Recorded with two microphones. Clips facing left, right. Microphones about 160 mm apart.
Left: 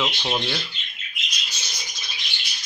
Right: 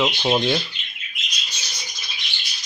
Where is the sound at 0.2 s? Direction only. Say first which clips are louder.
Right 7 dB; 25° right (ahead or behind).